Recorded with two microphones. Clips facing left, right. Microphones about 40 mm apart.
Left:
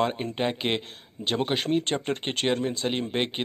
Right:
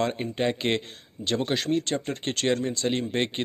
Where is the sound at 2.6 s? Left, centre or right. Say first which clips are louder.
Right 1 dB; centre.